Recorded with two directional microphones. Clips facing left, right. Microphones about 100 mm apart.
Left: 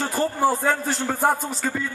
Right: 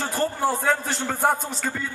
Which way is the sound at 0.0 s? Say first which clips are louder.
Left 2 dB; centre (ahead or behind).